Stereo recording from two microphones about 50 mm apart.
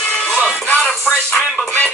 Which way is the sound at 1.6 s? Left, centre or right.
Left.